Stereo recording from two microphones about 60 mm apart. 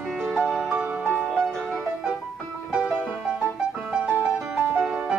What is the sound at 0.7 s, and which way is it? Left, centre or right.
Music, right.